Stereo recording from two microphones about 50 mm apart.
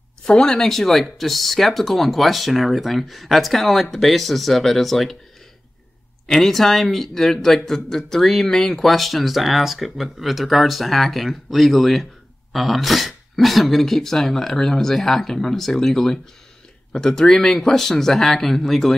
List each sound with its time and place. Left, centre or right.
0.2 s speech: centre
6.2 s speech: centre